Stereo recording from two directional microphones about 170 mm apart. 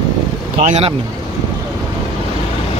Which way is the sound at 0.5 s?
40° right (ahead or behind).